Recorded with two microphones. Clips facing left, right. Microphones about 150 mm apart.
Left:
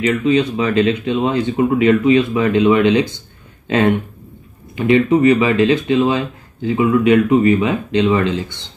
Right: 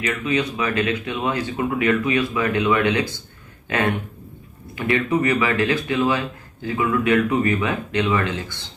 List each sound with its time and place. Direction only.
0.0 s speech: 25° left (ahead or behind)